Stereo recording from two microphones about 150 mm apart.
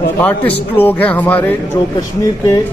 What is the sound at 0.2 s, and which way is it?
A man's voice, 10° left (ahead or behind).